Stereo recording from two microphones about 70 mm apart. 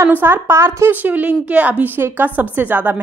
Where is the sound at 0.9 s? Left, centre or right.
Right.